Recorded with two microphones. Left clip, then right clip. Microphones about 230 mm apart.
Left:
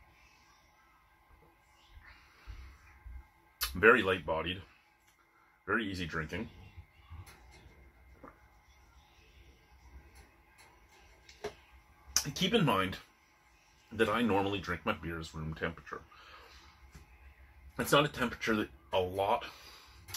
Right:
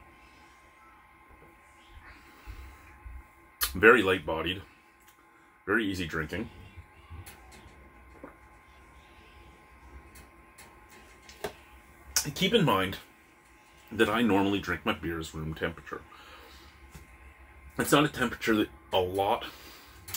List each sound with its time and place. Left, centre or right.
3.5 s speech: centre
5.7 s speech: centre
12.4 s speech: centre
13.9 s speech: centre
17.7 s speech: centre